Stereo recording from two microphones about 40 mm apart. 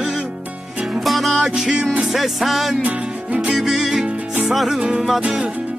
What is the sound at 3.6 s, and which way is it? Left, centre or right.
Music, centre.